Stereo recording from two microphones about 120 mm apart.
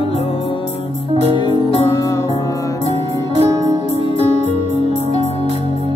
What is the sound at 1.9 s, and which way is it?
Music, 30° left (ahead or behind).